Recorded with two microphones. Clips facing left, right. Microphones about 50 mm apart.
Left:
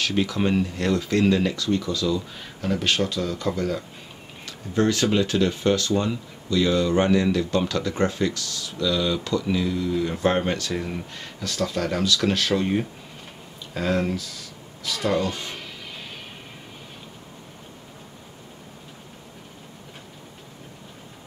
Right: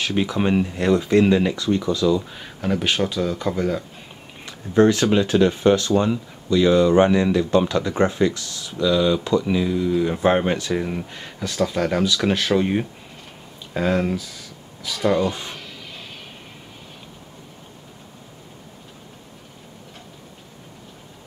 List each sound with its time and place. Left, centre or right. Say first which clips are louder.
0.0 s speech: right 2 dB; centre
4.5 s speech: right 6 dB; right
15.0 s speech: right 4 dB; centre
15.5 s a sound: even; centre